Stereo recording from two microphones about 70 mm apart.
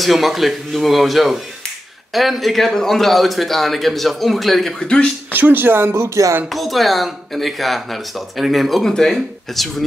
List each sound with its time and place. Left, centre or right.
0.0 s speech: centre
5.3 s speech: right
6.5 s speech: centre